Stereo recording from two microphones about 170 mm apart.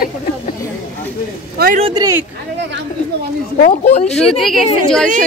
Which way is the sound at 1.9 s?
25° right (ahead or behind).